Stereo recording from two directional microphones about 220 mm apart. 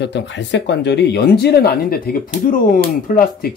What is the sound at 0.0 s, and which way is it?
Speech, 55° left (ahead or behind).